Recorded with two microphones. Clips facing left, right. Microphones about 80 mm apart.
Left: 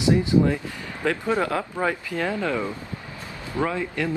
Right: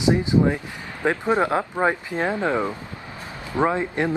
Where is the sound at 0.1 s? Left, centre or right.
Right.